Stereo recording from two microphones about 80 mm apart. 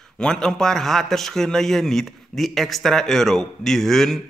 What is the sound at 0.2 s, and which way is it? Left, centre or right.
A man's voice, centre.